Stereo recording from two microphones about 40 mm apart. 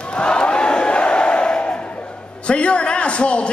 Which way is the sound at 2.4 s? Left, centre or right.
Left.